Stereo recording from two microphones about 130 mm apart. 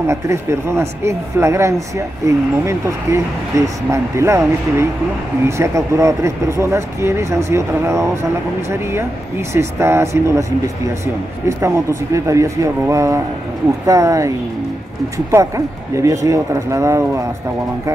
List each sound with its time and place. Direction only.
0.0 s speech: 20° right (ahead or behind)
11.4 s speech: 20° right (ahead or behind)
15.3 s speech: 25° right (ahead or behind)